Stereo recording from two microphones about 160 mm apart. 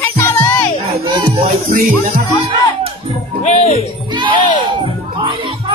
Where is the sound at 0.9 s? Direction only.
30° right (ahead or behind).